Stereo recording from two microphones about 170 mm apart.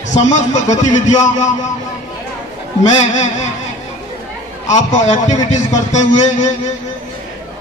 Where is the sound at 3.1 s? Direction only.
45° left (ahead or behind).